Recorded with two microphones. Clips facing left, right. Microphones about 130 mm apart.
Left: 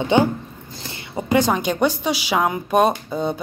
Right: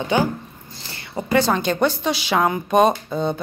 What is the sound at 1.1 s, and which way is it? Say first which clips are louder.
Speech: even; 10° left (ahead or behind).